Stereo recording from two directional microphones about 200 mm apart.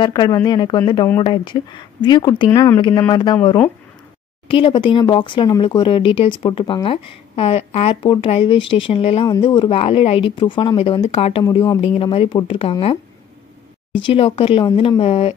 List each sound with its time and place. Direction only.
0.0 s speech: 20° left (ahead or behind)
4.5 s speech: 25° left (ahead or behind)
13.9 s speech: 25° left (ahead or behind)